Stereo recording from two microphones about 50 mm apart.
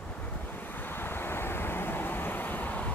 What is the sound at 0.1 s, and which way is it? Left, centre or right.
Waves, left.